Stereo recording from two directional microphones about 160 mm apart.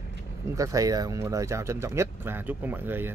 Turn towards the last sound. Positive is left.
turn(degrees=-15)  # may be behind; listen again after turning